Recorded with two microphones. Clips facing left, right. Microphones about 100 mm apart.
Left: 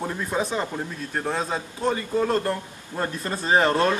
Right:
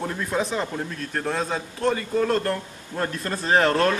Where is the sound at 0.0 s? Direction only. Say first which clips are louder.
Right 1 dB; 5° left (ahead or behind).